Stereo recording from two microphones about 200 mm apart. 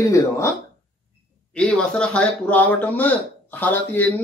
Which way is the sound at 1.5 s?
5° left (ahead or behind).